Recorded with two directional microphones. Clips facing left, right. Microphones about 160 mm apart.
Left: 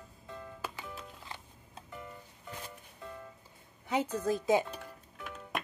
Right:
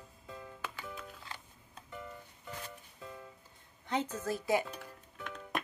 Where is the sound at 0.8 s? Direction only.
20° left (ahead or behind).